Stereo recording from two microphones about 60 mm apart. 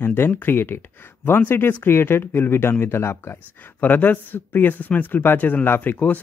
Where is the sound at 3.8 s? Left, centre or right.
Left.